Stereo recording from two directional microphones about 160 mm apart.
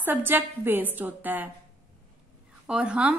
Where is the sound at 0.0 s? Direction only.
10° right (ahead or behind).